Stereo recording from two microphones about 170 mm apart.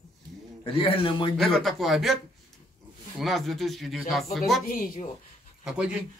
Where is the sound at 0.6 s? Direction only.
30° left (ahead or behind).